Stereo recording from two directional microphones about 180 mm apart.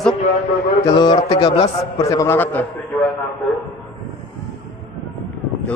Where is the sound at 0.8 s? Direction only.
20° left (ahead or behind).